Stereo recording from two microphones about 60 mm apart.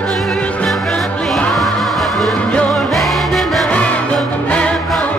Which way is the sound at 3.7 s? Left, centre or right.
Left.